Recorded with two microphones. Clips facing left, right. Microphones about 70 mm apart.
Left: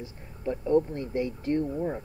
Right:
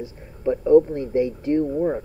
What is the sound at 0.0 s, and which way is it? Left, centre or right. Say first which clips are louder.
Speech: right 8 dB; right.